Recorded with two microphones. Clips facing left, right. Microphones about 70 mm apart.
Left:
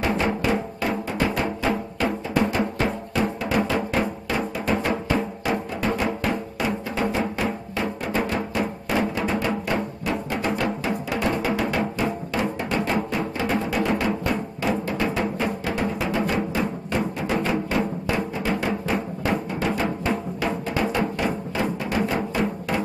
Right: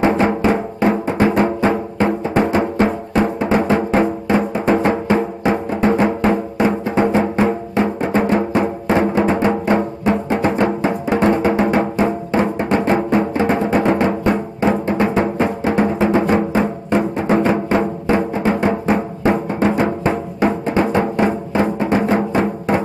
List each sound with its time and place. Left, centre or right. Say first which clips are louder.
0.0 s music: right 8 dB; right